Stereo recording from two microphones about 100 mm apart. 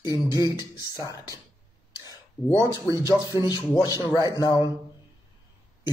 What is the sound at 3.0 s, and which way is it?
Speech, 45° left (ahead or behind).